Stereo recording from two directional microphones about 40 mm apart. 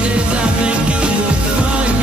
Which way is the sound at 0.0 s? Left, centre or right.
Right.